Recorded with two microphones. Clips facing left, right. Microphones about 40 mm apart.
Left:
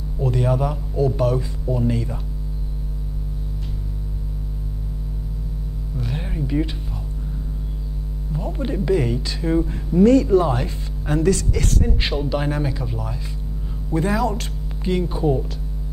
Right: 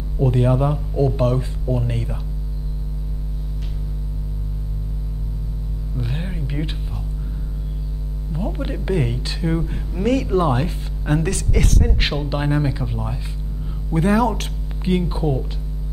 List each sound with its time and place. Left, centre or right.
0.2 s speech: centre
8.4 s mains hum: centre
8.8 s speech: centre